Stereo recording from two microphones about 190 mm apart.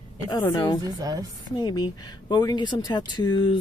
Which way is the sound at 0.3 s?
20° left (ahead or behind).